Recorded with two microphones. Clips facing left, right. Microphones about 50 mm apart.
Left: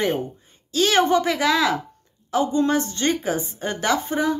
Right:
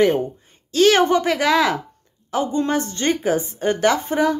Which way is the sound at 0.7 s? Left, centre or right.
Right.